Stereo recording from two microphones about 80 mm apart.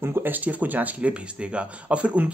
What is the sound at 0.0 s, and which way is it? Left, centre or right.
Speech, right.